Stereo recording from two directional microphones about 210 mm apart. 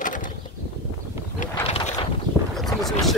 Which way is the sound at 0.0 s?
40° left (ahead or behind).